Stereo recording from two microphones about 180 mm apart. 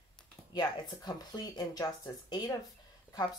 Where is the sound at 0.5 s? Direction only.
25° left (ahead or behind).